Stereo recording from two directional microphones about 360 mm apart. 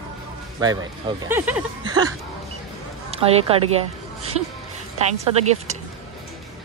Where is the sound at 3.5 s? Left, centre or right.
Centre.